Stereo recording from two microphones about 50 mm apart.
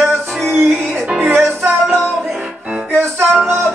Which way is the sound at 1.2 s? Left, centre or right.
Right.